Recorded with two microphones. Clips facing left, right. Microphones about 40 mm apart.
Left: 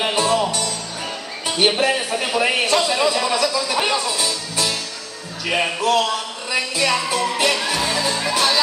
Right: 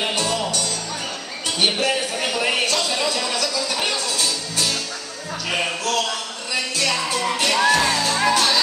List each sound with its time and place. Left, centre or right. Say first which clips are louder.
0.0 s music: left 4 dB; centre
1.5 s speech: left 3 dB; centre
6.5 s music: left 3 dB; centre